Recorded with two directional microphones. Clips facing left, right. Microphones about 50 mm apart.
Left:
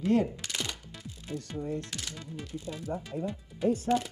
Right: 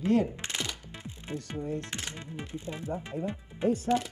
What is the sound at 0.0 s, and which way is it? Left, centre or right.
Music, right.